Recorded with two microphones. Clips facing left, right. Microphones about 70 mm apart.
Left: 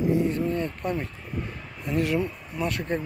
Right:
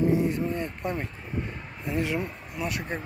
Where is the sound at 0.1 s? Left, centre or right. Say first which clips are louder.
Left 1 dB; right.